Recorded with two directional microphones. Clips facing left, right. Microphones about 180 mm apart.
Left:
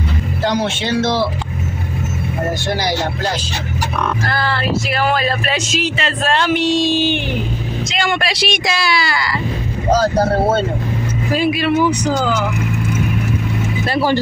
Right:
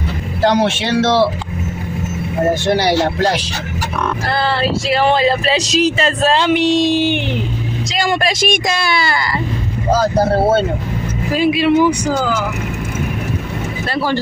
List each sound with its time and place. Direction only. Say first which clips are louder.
0.5 s speech: right 4 dB; 80° right
2.7 s speech: right 5 dB; 70° right (ahead or behind)
4.3 s speech: right 2 dB; 30° right (ahead or behind)
6.3 s speech: even; 20° right (ahead or behind)
7.9 s speech: right 3 dB; 35° right (ahead or behind)
11.3 s speech: right 3 dB; 15° right (ahead or behind)